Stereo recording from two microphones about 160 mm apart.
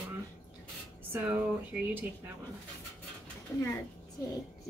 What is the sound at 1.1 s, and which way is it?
Speech, 10° right (ahead or behind).